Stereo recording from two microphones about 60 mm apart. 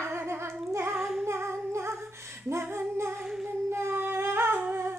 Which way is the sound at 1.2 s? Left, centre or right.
Right.